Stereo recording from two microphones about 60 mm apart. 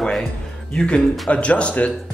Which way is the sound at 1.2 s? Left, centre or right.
Centre.